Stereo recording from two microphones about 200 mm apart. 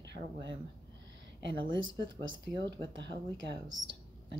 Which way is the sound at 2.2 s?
70° right (ahead or behind).